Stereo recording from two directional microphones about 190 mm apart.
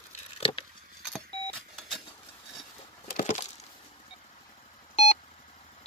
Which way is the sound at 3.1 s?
45° left (ahead or behind).